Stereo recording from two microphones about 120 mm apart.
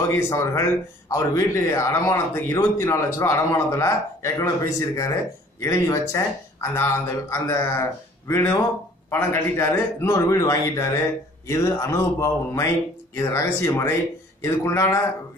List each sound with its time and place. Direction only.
0.3 s speech: 25° left (ahead or behind)